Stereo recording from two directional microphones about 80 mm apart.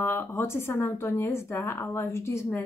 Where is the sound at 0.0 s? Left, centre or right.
Left.